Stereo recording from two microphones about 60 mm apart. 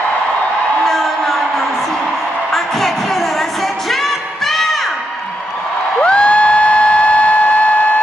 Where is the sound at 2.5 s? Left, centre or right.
Centre.